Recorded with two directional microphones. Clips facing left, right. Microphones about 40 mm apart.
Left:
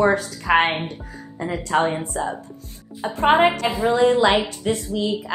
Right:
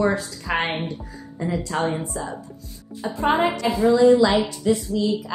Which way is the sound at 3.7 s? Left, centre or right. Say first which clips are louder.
Right 2 dB; centre.